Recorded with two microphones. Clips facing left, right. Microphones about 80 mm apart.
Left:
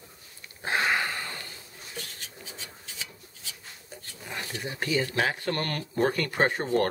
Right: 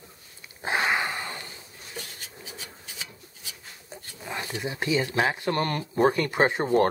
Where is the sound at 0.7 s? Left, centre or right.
Centre.